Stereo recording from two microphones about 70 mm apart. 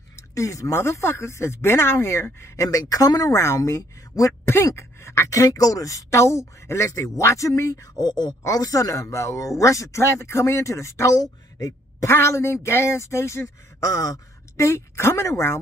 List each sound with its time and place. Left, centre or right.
0.1 s a sound: left
0.7 s speech: left
2.8 s speech: left
3.3 s speech: left
4.5 s speech: left
8.0 s speech: left